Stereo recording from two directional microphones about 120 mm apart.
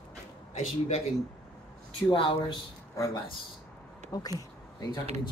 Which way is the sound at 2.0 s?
45° left (ahead or behind).